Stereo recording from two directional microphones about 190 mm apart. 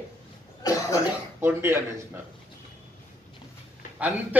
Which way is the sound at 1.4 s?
10° right (ahead or behind).